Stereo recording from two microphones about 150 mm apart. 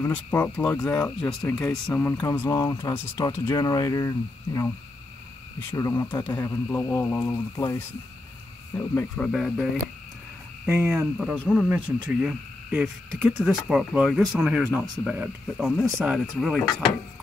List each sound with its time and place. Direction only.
0.0 s speech: 10° left (ahead or behind)
10.6 s speech: 10° right (ahead or behind)